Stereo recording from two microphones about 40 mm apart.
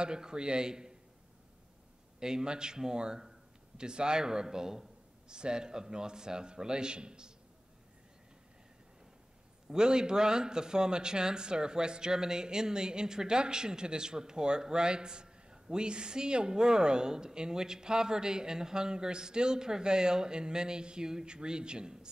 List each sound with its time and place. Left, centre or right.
0.0 s speech: centre
2.1 s a man's voice: centre
9.7 s speech: centre